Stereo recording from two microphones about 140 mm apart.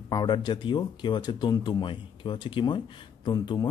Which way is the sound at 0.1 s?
30° left (ahead or behind).